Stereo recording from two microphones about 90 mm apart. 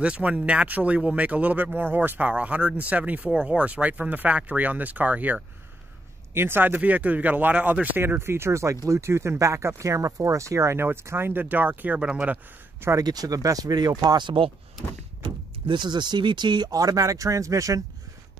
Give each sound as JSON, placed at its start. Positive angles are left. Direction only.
{"t": 0.0, "sound": "speech", "side_deg": -15}
{"t": 12.9, "sound": "speech", "side_deg": -45}